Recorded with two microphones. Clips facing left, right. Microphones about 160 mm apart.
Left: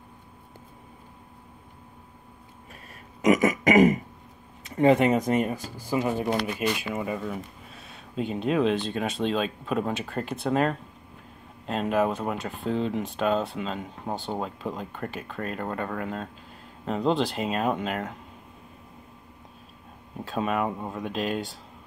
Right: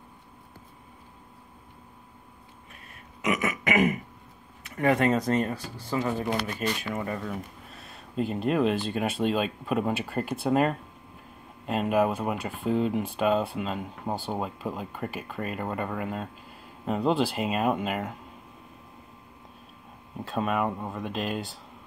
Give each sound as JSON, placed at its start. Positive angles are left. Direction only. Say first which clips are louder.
{"t": 3.2, "sound": "burping", "louder": "left 7 dB", "side_deg": 35}
{"t": 4.6, "sound": "speech", "louder": "left 4 dB", "side_deg": 25}
{"t": 6.4, "sound": "speech", "louder": "left 3 dB", "side_deg": 5}
{"t": 20.2, "sound": "speech", "louder": "even", "side_deg": 0}